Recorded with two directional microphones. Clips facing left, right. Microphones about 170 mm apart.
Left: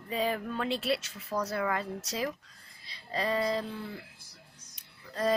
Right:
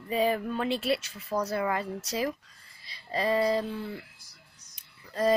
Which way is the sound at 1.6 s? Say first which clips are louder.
Right 2 dB; 5° right (ahead or behind).